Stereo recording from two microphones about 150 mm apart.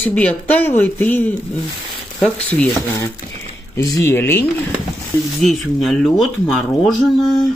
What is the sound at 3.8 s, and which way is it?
Speech, 20° left (ahead or behind).